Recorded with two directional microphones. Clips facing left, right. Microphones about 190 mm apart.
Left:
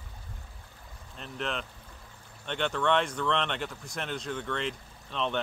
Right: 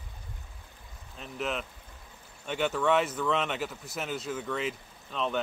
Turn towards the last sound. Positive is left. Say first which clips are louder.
# even
turn(degrees=-5)  # may be behind; listen again after turning